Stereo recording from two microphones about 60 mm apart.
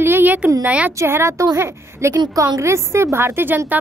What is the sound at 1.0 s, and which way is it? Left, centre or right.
A woman's voice, right.